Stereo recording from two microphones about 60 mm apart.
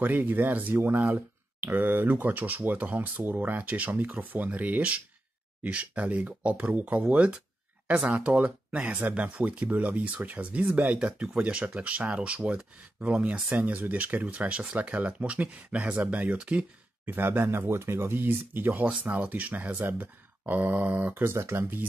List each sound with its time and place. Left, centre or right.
0.0 s speech: right
17.0 s speech: right
21.1 s speech: right